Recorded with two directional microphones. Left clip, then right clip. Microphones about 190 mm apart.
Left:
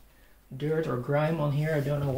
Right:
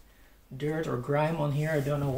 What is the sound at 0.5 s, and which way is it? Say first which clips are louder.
Speech: left 2 dB; 20° left (ahead or behind).